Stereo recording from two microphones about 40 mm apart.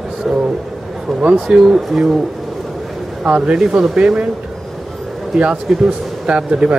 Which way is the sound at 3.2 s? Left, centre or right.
Right.